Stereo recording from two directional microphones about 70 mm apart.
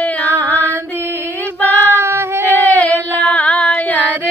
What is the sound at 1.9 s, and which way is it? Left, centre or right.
Female singing, right.